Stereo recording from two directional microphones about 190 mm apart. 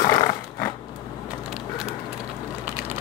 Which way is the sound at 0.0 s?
20° left (ahead or behind).